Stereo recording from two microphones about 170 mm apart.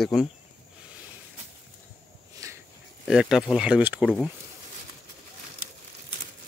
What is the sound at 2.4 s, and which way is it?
Walk, 20° right (ahead or behind).